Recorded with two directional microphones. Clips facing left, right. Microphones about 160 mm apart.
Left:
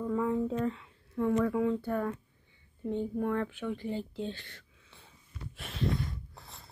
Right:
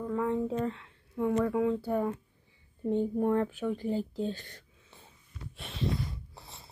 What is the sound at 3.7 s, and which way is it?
Speech, 40° right (ahead or behind).